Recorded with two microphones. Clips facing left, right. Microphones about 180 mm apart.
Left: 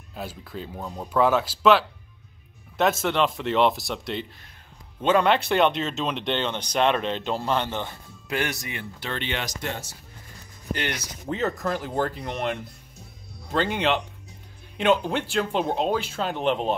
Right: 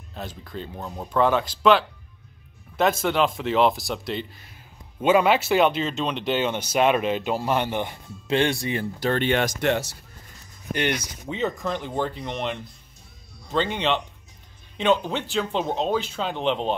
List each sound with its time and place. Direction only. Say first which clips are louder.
0.1 s speech: even; 5° left (ahead or behind); by 9.5 s 50° right (ahead or behind)
9.6 s speech: right 9 dB; 70° right (ahead or behind)
10.7 s speech: right 4 dB; 20° right (ahead or behind)
11.2 s speech: left 1 dB; centre (ahead or behind)